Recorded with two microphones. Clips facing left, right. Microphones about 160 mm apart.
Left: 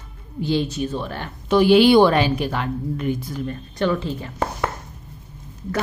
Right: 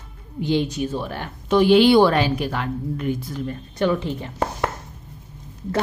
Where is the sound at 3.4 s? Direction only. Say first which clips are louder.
Right 1 dB; 15° right (ahead or behind).